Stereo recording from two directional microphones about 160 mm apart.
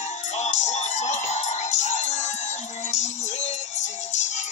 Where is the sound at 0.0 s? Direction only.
45° left (ahead or behind).